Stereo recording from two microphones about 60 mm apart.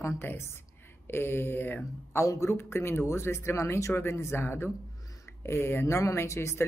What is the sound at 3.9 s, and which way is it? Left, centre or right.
Speech, left.